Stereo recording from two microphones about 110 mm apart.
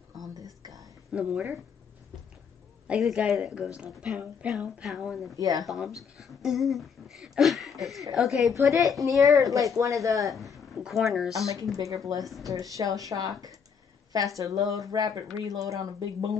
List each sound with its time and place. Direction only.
0.6 s whispering: 35° right (ahead or behind)
1.1 s a woman's voice: 10° right (ahead or behind)
2.9 s a woman's voice: 10° right (ahead or behind)
5.3 s speech: 35° right (ahead or behind)
6.1 s speech: 5° right (ahead or behind)
8.5 s a woman's voice: 30° right (ahead or behind)
10.3 s speech: centre (ahead or behind)
11.7 s speech: 30° right (ahead or behind)